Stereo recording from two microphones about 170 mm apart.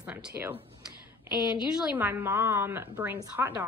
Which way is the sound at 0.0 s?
5° right (ahead or behind).